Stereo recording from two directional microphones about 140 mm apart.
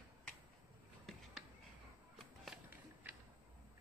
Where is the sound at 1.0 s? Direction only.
Centre (ahead or behind).